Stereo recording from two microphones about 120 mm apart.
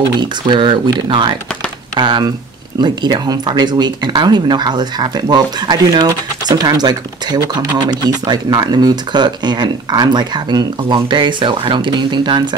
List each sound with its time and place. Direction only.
0.2 s speech: 40° right (ahead or behind)